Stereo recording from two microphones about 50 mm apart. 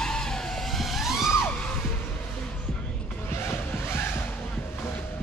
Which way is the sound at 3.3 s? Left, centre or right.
Left.